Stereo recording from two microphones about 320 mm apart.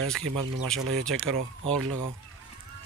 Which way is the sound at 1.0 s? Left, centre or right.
Centre.